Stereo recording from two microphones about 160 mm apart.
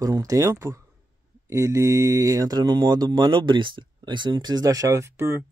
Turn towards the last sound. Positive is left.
turn(degrees=-15)  # may be behind; listen again after turning